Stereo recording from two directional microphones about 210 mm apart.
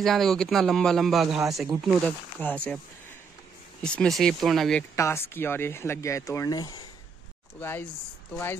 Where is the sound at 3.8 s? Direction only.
5° left (ahead or behind).